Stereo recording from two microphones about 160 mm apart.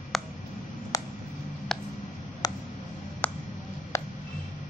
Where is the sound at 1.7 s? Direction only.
5° left (ahead or behind).